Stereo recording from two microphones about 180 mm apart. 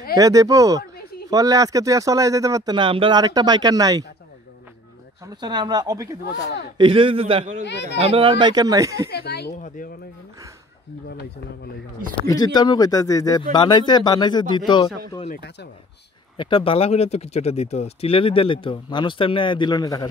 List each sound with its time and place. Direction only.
0.1 s speech: 20° right (ahead or behind)
5.2 s speech: 25° right (ahead or behind)
7.6 s speech: 75° left (ahead or behind)
8.0 s speech: 30° right (ahead or behind)
9.1 s speech: 65° left (ahead or behind)
9.8 s speech: 50° left (ahead or behind)
12.3 s speech: 20° left (ahead or behind)
15.2 s speech: 65° left (ahead or behind)
16.3 s speech: 30° left (ahead or behind)